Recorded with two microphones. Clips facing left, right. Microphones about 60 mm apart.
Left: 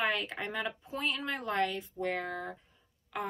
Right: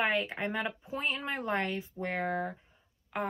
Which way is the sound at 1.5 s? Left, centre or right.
Right.